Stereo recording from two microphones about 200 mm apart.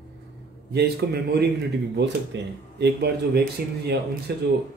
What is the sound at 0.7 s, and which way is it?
Speech, 55° right (ahead or behind).